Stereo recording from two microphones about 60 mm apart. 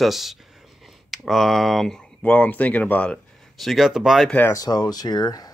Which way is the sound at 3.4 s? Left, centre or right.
Centre.